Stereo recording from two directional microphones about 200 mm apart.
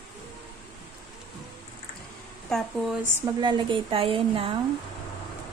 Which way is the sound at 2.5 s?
Centre (ahead or behind).